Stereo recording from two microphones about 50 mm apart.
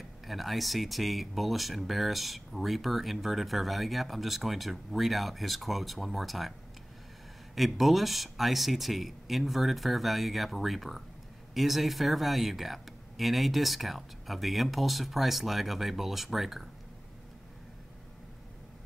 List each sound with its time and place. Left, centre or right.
0.3 s speech: centre
7.5 s speech: centre